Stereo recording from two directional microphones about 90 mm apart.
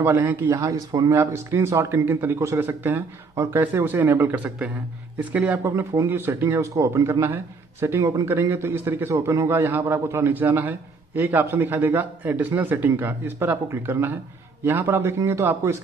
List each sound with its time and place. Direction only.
0.0 s a man's voice: 25° right (ahead or behind)
0.6 s a man's voice: 40° right (ahead or behind); by 5.6 s 15° right (ahead or behind)
5.6 s a man's voice: 30° right (ahead or behind)
9.5 s a man's voice: 25° right (ahead or behind)